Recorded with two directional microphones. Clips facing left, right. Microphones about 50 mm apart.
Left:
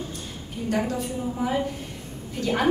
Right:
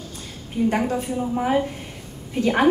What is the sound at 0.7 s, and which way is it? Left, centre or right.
A woman's voice, right.